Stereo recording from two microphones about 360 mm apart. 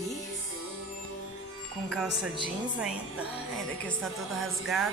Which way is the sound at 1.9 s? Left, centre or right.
Centre.